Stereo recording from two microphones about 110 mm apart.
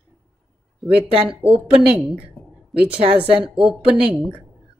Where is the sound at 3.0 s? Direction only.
65° right (ahead or behind).